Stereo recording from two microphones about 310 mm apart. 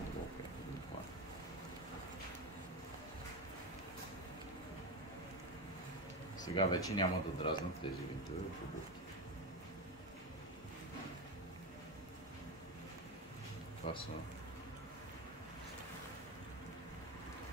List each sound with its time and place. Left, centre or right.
6.4 s speech: centre
13.8 s speech: centre